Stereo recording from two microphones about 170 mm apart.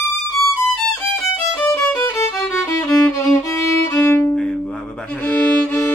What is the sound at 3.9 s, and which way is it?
Violin, 15° left (ahead or behind).